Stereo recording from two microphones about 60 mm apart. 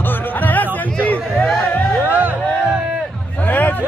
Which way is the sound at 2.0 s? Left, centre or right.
Right.